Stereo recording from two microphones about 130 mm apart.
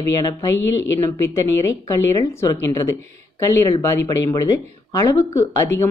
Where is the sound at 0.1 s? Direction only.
30° left (ahead or behind).